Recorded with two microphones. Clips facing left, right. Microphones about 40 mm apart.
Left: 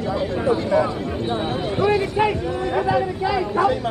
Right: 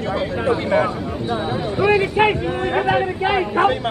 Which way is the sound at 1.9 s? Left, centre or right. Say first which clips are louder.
Right 5 dB; right.